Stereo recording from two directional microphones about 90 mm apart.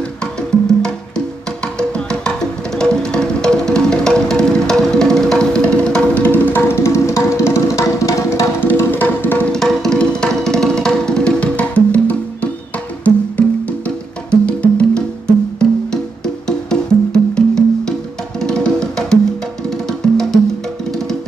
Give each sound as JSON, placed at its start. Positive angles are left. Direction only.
{"t": 0.2, "sound": "music", "side_deg": 10}
{"t": 8.5, "sound": "music", "side_deg": 20}
{"t": 9.5, "sound": "music", "side_deg": 5}